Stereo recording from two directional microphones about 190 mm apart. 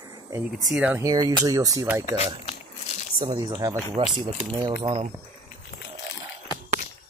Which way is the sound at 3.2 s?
25° right (ahead or behind).